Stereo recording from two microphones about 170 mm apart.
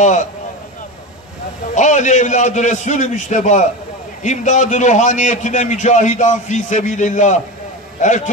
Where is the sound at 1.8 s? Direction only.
45° left (ahead or behind).